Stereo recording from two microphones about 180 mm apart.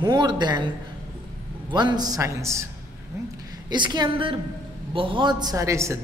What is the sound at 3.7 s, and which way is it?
A woman's voice, 25° right (ahead or behind).